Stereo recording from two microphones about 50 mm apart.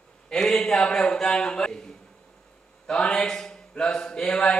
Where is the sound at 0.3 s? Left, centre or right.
Centre.